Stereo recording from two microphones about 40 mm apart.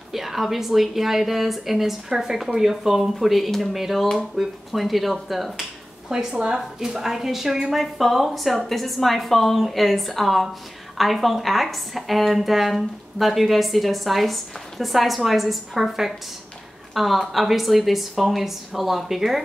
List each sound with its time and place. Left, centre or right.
0.1 s speech: centre
3.0 s a woman's voice: centre
6.3 s speech: right
7.0 s a woman's voice: centre